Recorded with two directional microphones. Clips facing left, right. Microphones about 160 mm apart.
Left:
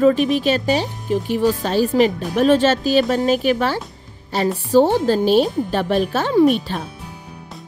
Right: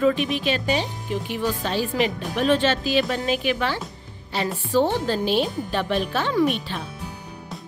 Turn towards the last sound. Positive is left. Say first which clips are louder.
# left 7 dB
turn(degrees=45)  # may be behind; listen again after turning